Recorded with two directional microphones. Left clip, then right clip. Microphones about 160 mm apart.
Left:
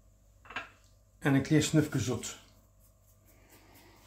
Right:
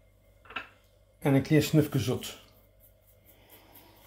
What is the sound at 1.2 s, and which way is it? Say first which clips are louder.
Speech: right 3 dB; 25° right (ahead or behind).